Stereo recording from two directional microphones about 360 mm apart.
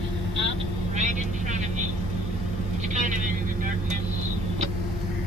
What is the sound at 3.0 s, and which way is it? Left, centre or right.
Vehicle, right.